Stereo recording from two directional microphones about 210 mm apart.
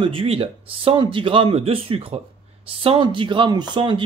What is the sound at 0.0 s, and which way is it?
Speech, 25° right (ahead or behind).